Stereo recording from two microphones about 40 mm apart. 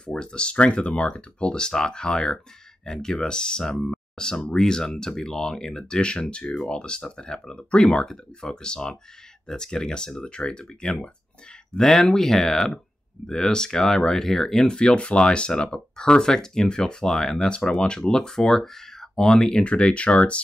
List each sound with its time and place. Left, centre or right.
0.0 s speech: left
11.7 s speech: centre; by 20.4 s left